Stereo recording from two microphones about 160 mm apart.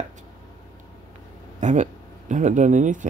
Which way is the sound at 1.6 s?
50° right (ahead or behind).